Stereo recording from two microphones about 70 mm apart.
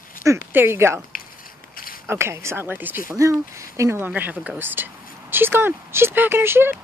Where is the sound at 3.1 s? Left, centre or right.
Right.